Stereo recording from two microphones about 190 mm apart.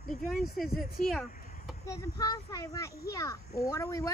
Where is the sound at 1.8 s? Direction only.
20° left (ahead or behind).